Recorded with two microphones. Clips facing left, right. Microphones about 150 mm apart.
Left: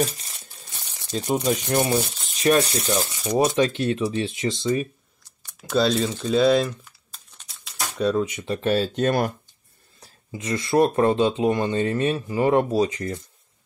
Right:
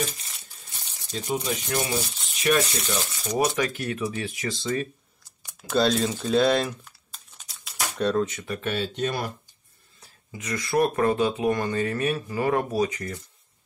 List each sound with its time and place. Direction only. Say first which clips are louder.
1.1 s speech: left 5 dB; 45° left (ahead or behind)
2.4 s speech: left 4 dB; 35° left (ahead or behind)
3.5 s speech: left 6 dB; 25° left (ahead or behind)
5.7 s crumpling: left 1 dB; centre (ahead or behind)
8.5 s speech: left 6 dB; 35° left (ahead or behind); by 9.3 s 50° left (ahead or behind)
9.9 s speech: left 5 dB; 35° left (ahead or behind)